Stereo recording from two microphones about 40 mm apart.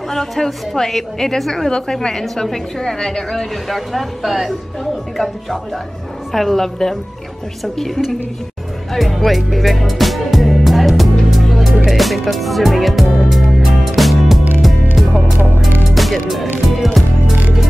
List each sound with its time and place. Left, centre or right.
0.1 s a woman's voice: centre
3.6 s a woman's voice: centre
8.9 s music: centre